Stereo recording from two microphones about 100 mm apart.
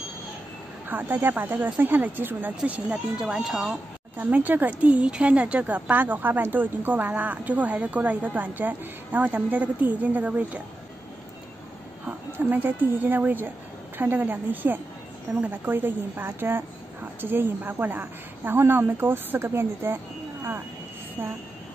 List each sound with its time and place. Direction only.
0.8 s speech: 20° right (ahead or behind)
4.2 s speech: 15° right (ahead or behind)
12.1 s speech: 15° right (ahead or behind)
21.2 s speech: 25° right (ahead or behind)